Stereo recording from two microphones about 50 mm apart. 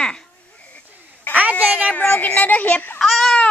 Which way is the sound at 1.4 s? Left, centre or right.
Right.